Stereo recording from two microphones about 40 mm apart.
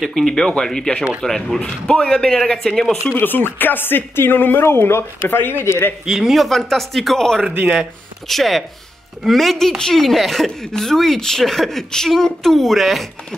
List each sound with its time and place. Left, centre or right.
0.0 s a man's voice: centre
2.3 s speech: centre
3.2 s speech: left
6.0 s speech: centre